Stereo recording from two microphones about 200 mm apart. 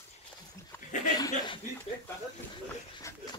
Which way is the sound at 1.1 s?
20° left (ahead or behind).